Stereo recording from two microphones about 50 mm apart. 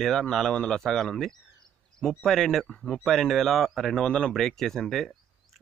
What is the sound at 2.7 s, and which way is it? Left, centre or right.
Speech, centre.